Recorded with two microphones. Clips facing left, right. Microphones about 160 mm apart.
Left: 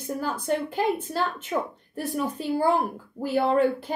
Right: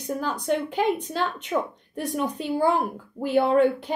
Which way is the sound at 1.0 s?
5° left (ahead or behind).